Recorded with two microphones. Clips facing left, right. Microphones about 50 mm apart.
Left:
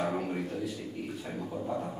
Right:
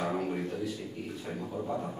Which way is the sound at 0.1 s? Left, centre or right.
Centre.